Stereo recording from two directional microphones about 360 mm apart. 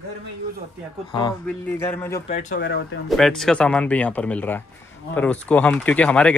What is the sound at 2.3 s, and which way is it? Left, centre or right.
Speech, left.